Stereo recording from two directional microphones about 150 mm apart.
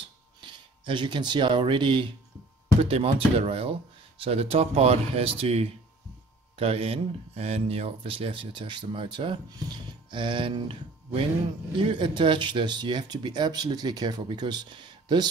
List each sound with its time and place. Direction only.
0.4 s speech: 35° right (ahead or behind)